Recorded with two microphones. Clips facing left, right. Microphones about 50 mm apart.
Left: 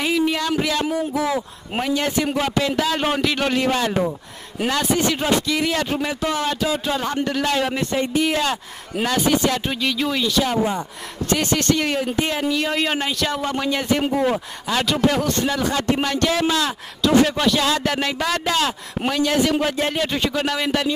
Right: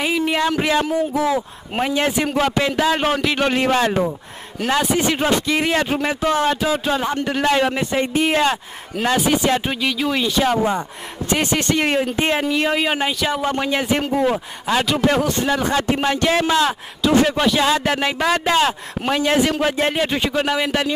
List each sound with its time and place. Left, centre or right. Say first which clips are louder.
0.0 s a man's voice: right 1 dB; centre
3.5 s a man's voice: right 3 dB; right
6.4 s a man's voice: right 3 dB; right
9.8 s speech: right 2 dB; centre
10.2 s a man's voice: right 3 dB; right
10.6 s speech: right 2 dB; right
11.3 s a man's voice: right 1 dB; right
12.7 s speech: right 2 dB; centre
15.4 s a man's voice: right 2 dB; right